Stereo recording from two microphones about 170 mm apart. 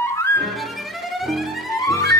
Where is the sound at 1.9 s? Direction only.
20° left (ahead or behind).